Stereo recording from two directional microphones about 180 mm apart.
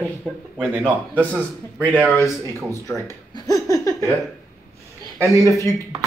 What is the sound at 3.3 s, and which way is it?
Laughter, 20° left (ahead or behind).